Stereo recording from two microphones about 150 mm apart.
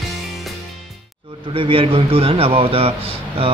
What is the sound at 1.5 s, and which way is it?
Speech, 35° right (ahead or behind).